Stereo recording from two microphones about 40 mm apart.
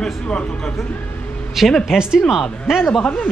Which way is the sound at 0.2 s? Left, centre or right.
Left.